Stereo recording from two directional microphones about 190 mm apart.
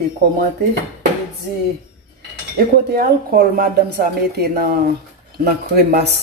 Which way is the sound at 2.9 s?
50° right (ahead or behind).